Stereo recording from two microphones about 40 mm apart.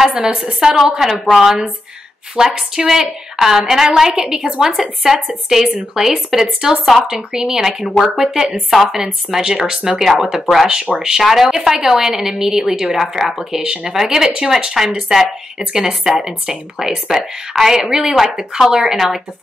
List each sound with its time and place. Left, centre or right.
0.2 s a woman's voice: centre
0.7 s a woman's voice: centre
6.0 s a woman's voice: centre
10.7 s a woman's voice: centre